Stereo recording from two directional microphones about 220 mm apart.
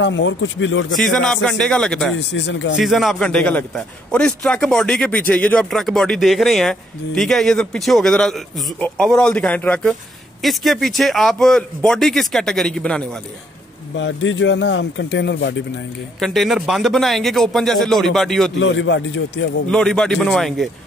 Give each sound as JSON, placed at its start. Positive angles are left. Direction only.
{"t": 0.0, "sound": "speech", "side_deg": 55}
{"t": 0.9, "sound": "a man's voice", "side_deg": 0}
{"t": 2.1, "sound": "a man's voice", "side_deg": 55}
{"t": 2.8, "sound": "a man's voice", "side_deg": 0}
{"t": 13.9, "sound": "speech", "side_deg": 60}
{"t": 16.2, "sound": "a man's voice", "side_deg": 0}
{"t": 18.6, "sound": "a man's voice", "side_deg": 55}
{"t": 19.7, "sound": "a man's voice", "side_deg": 0}